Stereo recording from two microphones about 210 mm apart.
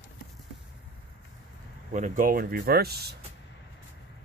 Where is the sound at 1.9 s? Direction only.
35° right (ahead or behind).